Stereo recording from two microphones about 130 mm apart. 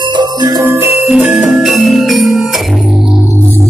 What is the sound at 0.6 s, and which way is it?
Music, 20° right (ahead or behind).